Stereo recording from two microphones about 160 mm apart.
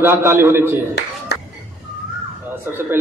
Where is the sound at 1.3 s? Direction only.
90° left.